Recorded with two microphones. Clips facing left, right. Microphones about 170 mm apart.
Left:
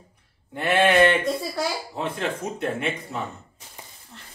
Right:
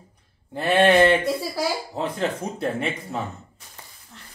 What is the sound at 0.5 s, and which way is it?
Speech, 30° right (ahead or behind).